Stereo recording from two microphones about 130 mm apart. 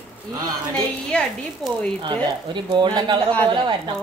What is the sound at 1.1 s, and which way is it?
Speech, 5° left (ahead or behind).